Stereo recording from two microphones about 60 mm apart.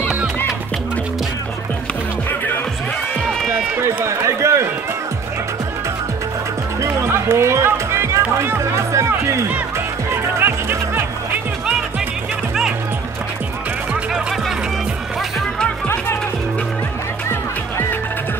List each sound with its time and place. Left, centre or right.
3.8 s speech: right
6.8 s music: right
9.1 s speech: right
10.4 s music: right